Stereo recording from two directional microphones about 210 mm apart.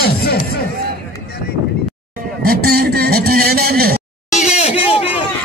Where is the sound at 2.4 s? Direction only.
45° right (ahead or behind).